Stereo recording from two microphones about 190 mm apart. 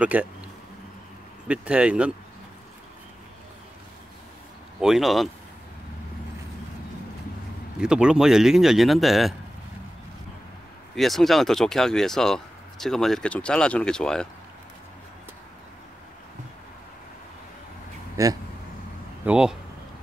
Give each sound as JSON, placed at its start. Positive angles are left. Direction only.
{"t": 0.0, "sound": "speech", "side_deg": -5}
{"t": 1.5, "sound": "speech", "side_deg": -5}
{"t": 4.7, "sound": "speech", "side_deg": 0}
{"t": 7.8, "sound": "speech", "side_deg": -5}
{"t": 11.0, "sound": "speech", "side_deg": 0}
{"t": 18.1, "sound": "speech", "side_deg": -15}
{"t": 19.2, "sound": "speech", "side_deg": -5}